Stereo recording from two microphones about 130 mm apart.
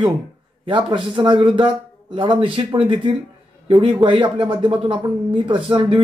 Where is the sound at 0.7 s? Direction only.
40° right (ahead or behind).